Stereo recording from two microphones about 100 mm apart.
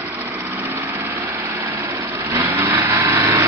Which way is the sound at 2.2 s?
30° right (ahead or behind).